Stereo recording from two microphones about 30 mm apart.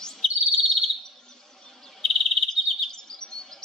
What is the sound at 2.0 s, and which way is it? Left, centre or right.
Insect, centre.